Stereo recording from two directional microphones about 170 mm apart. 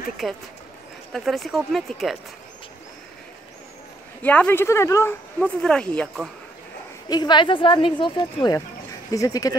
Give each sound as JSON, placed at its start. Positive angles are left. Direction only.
{"t": 0.2, "sound": "speech", "side_deg": 0}
{"t": 4.2, "sound": "speech", "side_deg": 10}
{"t": 5.6, "sound": "speech", "side_deg": 5}
{"t": 7.1, "sound": "speech", "side_deg": 25}